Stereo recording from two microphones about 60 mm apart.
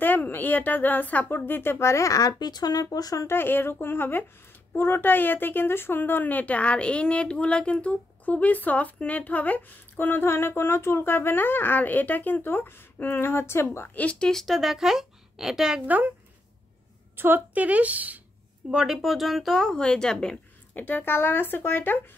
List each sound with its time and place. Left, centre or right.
0.0 s a woman's voice: left
3.3 s a woman's voice: left
14.2 s a woman's voice: centre
17.2 s a woman's voice: right
18.7 s a woman's voice: centre
18.9 s a woman's voice: centre
20.7 s a woman's voice: left